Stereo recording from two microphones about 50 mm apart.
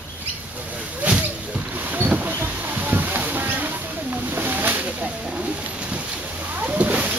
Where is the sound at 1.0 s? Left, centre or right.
Right.